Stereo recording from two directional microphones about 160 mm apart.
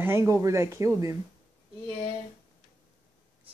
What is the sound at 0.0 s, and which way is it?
Speech, 15° right (ahead or behind).